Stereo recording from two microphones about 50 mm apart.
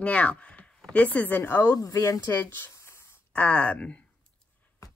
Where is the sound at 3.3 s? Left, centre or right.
Left.